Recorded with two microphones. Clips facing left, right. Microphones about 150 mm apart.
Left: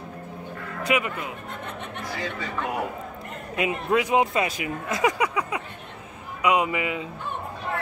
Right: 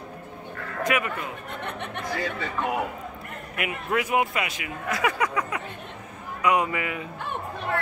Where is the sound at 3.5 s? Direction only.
20° left (ahead or behind).